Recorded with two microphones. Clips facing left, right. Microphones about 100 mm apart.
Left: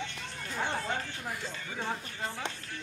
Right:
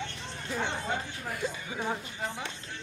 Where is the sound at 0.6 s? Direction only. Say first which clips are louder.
Left 2 dB; 20° right (ahead or behind).